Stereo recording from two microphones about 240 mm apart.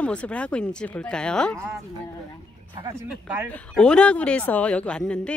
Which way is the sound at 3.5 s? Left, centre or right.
Centre.